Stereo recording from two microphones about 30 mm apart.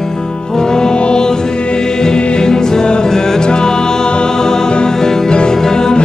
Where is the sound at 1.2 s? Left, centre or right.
Left.